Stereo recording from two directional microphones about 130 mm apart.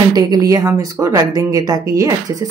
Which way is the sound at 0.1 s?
30° right (ahead or behind).